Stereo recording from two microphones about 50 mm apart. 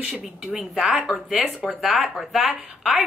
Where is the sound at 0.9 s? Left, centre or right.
Centre.